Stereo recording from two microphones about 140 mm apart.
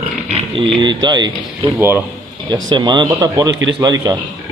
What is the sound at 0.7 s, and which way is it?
Speech, 35° right (ahead or behind).